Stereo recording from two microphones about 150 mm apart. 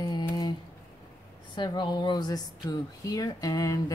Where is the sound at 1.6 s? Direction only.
30° left (ahead or behind).